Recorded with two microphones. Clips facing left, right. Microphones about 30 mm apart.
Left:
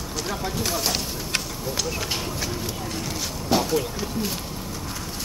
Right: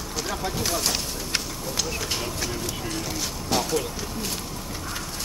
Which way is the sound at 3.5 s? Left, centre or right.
Centre.